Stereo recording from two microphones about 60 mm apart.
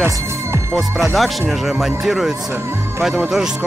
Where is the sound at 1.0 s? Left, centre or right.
Centre.